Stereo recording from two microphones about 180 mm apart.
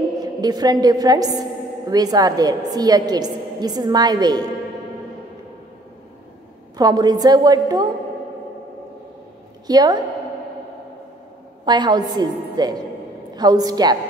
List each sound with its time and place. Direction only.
0.2 s a woman's voice: 20° right (ahead or behind)
6.8 s a woman's voice: 20° right (ahead or behind)
9.7 s a woman's voice: 20° right (ahead or behind)
11.6 s a woman's voice: 25° right (ahead or behind)